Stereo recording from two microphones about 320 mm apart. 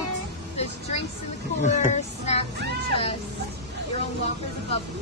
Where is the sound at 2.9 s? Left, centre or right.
Centre.